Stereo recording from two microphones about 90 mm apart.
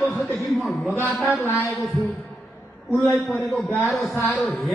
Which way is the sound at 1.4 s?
35° left (ahead or behind).